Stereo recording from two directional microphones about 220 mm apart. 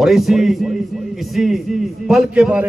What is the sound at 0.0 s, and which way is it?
A man's voice, centre (ahead or behind).